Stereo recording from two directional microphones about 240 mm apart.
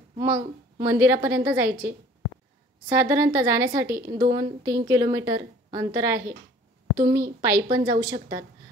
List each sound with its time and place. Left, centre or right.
0.2 s a woman's voice: centre
7.2 s a woman's voice: right
7.7 s a woman's voice: centre